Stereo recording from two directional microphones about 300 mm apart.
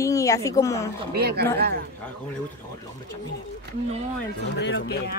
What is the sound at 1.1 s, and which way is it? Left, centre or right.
Speech, right.